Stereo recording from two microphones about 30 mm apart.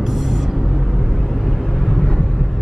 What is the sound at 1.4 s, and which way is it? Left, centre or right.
Vehicle, centre.